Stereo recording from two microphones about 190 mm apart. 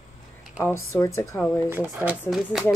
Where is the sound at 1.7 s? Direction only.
10° right (ahead or behind).